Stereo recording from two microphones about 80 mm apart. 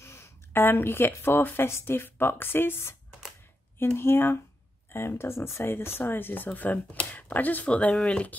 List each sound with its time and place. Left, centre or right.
0.0 s speech: left; by 8.4 s centre